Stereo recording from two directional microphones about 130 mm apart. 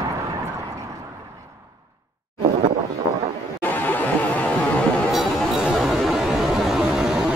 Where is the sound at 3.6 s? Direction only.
15° left (ahead or behind).